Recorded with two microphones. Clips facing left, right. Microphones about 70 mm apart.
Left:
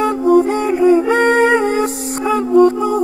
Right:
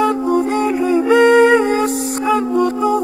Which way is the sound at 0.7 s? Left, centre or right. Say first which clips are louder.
Left 1 dB; left.